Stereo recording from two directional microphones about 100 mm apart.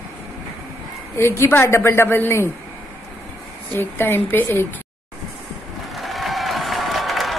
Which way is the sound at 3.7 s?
20° left (ahead or behind).